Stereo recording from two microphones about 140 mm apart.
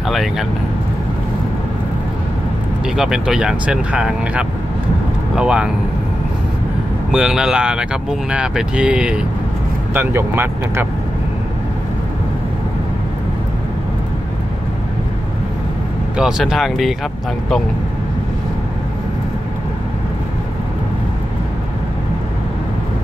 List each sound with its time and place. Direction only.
0.1 s speech: centre (ahead or behind)
3.0 s speech: 5° right (ahead or behind)
7.1 s speech: 5° right (ahead or behind)
16.2 s speech: 5° right (ahead or behind)